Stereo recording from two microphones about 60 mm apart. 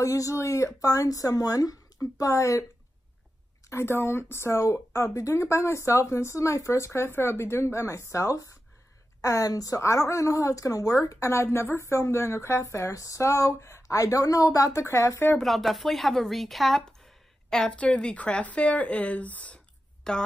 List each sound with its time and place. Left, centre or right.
0.0 s speech: left
3.7 s speech: left
9.2 s speech: left
9.8 s a woman's voice: left
11.3 s speech: left
13.9 s speech: left
14.7 s a woman's voice: left
15.3 s speech: centre
17.6 s speech: left
20.0 s a woman's voice: centre